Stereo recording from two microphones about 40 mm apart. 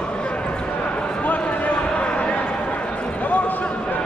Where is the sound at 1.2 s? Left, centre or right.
Left.